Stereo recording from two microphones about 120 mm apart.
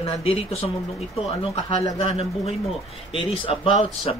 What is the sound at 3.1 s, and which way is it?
Speech, 45° left (ahead or behind).